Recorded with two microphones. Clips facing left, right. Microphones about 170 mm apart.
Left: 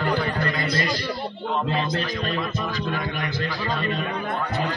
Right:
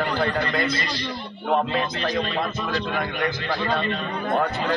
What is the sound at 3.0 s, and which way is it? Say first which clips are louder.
Speech: right 3 dB; 50° right (ahead or behind).